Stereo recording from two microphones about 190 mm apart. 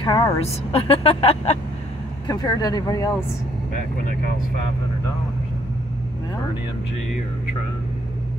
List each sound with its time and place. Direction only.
0.0 s a woman's voice: 20° left (ahead or behind)
0.4 s speech: 30° left (ahead or behind)
2.2 s speech: 20° left (ahead or behind)